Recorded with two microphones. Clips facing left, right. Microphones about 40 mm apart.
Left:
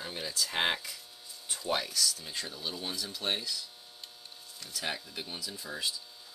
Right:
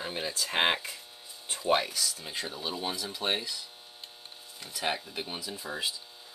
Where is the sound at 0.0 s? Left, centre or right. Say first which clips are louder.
Right 2 dB; right.